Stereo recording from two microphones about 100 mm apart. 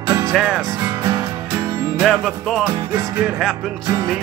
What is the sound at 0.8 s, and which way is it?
Music, 30° right (ahead or behind).